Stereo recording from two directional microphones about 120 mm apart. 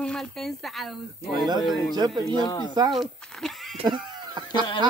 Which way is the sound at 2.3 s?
35° left (ahead or behind).